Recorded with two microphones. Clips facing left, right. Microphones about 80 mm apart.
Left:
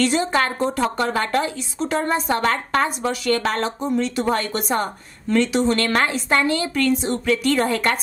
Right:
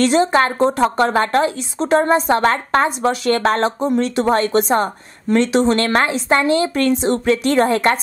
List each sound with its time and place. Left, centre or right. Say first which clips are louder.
0.0 s speech: right 5 dB; right